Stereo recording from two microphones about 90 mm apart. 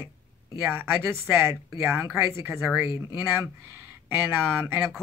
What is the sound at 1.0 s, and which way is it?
Speech, 30° right (ahead or behind).